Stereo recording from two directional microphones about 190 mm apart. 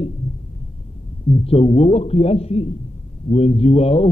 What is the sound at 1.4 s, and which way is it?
Speech, 30° left (ahead or behind).